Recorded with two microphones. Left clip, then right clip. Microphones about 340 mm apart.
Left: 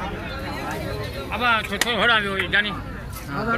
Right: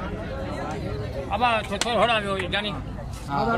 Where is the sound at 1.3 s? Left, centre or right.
Right.